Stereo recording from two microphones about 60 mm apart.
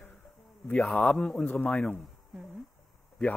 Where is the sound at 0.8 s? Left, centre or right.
Centre.